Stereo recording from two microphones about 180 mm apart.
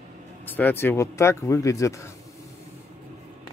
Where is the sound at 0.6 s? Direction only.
10° left (ahead or behind).